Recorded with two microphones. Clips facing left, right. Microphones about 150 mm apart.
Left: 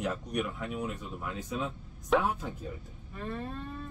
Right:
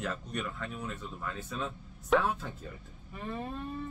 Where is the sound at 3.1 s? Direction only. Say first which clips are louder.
Left 1 dB; 10° right (ahead or behind).